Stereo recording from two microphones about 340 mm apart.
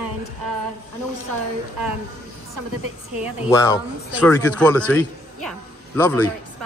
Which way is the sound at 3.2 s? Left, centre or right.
Centre.